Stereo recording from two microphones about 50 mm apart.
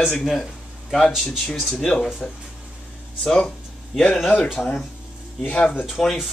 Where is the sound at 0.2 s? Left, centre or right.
Centre.